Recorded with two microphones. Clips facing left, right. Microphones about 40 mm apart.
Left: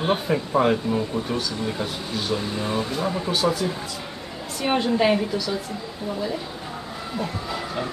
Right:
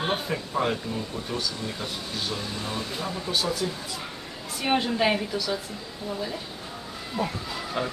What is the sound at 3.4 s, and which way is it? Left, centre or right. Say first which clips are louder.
Speech: left 7 dB; left.